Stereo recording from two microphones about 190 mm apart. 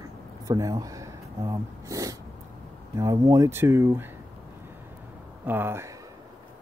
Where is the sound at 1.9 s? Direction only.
20° right (ahead or behind).